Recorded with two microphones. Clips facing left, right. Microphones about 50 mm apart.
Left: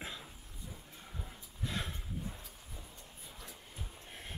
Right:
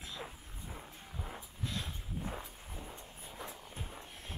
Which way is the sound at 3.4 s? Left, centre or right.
Right.